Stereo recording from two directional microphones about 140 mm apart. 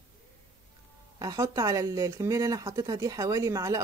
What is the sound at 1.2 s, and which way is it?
Speech, 25° right (ahead or behind).